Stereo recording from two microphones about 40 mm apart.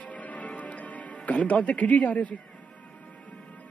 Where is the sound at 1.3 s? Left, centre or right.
Left.